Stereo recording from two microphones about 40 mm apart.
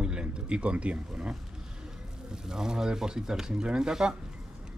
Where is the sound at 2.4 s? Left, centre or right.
Centre.